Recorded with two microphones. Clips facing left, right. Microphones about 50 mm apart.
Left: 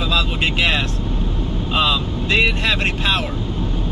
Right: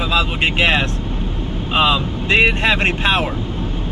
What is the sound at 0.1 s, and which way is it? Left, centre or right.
Speech, right.